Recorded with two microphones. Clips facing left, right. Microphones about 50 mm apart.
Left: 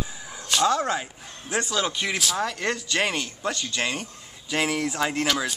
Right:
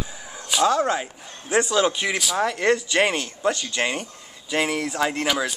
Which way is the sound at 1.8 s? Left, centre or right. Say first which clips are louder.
Right 6 dB; centre.